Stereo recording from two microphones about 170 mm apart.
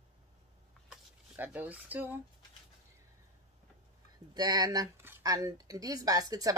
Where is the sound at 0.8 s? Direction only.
10° right (ahead or behind).